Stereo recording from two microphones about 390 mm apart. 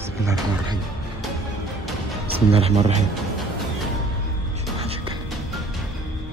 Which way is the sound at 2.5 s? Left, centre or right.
Centre.